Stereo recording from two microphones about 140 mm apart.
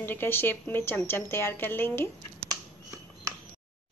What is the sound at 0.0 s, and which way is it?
A woman's voice, 15° left (ahead or behind).